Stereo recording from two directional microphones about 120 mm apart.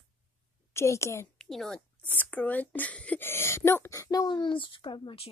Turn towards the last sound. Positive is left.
turn(degrees=45)  # may be behind; listen again after turning